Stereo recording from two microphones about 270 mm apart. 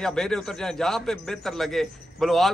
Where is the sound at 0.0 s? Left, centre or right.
Centre.